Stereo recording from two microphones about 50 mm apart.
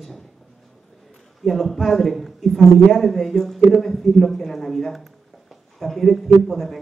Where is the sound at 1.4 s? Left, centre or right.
Centre.